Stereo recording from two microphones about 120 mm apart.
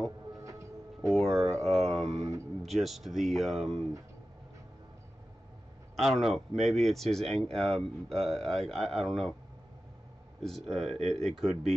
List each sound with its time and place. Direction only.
0.3 s a sound: 25° right (ahead or behind)
1.1 s speech: 5° left (ahead or behind)
6.0 s speech: centre (ahead or behind)
10.4 s speech: centre (ahead or behind)